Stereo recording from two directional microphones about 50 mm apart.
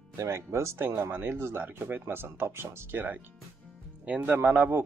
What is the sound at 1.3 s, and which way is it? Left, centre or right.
Speech, right.